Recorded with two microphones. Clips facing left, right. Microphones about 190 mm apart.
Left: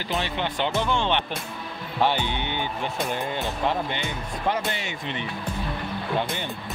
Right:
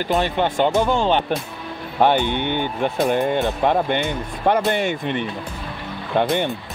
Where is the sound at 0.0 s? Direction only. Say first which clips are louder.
Right 8 dB; 50° right (ahead or behind).